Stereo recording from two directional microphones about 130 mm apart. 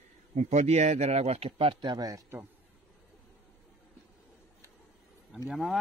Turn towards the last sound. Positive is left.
turn(degrees=0)  # may be behind; listen again after turning